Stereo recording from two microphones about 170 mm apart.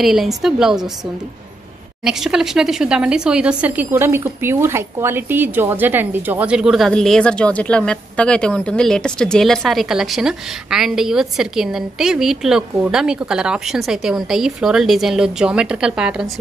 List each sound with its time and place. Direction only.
0.0 s speech: centre (ahead or behind)
2.0 s speech: 5° right (ahead or behind)